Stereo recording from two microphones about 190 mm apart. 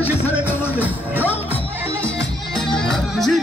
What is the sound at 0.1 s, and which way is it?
Music, 5° right (ahead or behind).